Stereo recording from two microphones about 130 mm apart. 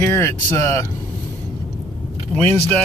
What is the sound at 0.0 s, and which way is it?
Speech, 20° left (ahead or behind).